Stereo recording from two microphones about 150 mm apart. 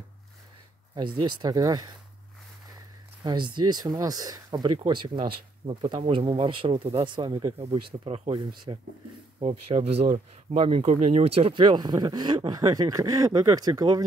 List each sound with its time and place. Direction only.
1.2 s speech: 25° right (ahead or behind)
3.3 s speech: 30° right (ahead or behind)
7.5 s speech: 40° right (ahead or behind)